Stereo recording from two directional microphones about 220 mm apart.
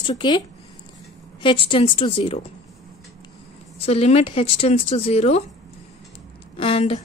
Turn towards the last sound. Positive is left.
turn(degrees=25)  # may be behind; listen again after turning